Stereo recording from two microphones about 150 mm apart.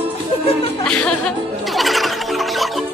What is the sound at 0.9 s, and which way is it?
Music, 5° left (ahead or behind).